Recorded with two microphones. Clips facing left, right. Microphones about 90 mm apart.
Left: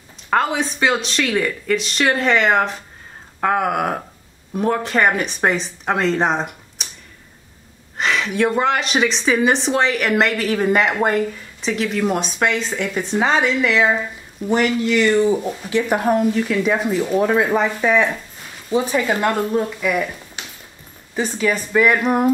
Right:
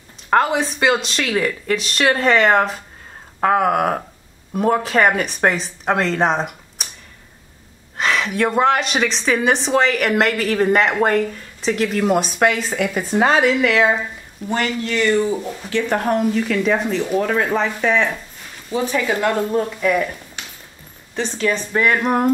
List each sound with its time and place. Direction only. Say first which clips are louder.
0.3 s speech: right 2 dB; centre (ahead or behind)
8.0 s speech: even; centre (ahead or behind)
14.5 s speech: left 4 dB; 15° left (ahead or behind)
18.7 s speech: left 2 dB; 30° left (ahead or behind)
19.5 s speech: right 1 dB; 5° left (ahead or behind)
21.1 s a woman's voice: left 1 dB; 10° left (ahead or behind)